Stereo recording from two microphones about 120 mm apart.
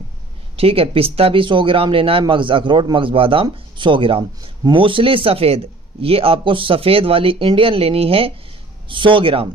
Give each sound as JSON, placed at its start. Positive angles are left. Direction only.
{"t": 0.6, "sound": "a man's voice", "side_deg": -50}